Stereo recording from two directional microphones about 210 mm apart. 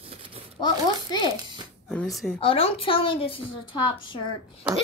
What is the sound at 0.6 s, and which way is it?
Speech, 20° left (ahead or behind).